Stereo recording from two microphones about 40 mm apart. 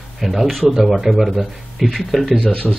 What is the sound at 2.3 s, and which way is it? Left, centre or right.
Speech, centre.